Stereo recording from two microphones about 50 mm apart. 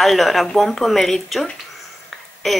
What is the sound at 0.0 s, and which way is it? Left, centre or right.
Speech, centre.